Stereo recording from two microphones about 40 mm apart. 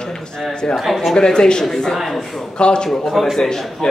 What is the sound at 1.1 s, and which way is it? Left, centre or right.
Speech, centre.